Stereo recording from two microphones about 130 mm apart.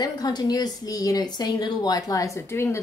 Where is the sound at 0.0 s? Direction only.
30° left (ahead or behind).